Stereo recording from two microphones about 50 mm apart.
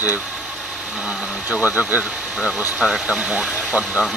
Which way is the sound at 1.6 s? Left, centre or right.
Right.